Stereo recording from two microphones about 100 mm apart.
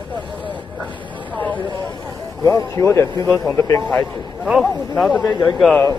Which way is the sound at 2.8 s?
25° left (ahead or behind).